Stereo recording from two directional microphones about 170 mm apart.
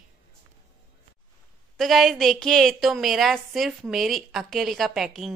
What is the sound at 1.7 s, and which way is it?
A woman's voice, centre (ahead or behind).